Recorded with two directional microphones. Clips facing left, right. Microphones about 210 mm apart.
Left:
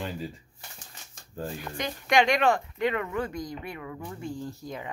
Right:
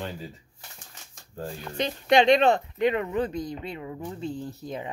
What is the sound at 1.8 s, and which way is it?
Speech, 25° right (ahead or behind).